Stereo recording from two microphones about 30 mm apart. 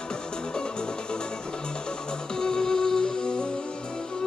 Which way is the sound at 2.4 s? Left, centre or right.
Left.